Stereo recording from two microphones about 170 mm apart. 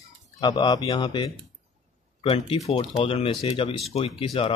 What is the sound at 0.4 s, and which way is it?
Speech, 25° left (ahead or behind).